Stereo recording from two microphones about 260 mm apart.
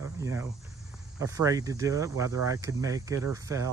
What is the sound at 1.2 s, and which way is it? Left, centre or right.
Speech, centre.